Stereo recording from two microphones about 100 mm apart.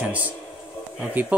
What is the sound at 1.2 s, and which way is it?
Speech, 20° right (ahead or behind).